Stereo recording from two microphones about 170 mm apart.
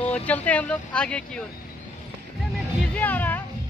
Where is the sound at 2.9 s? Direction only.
10° left (ahead or behind).